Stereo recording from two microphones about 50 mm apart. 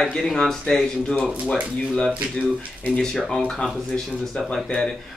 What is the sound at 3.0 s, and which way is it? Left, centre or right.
Speech, centre.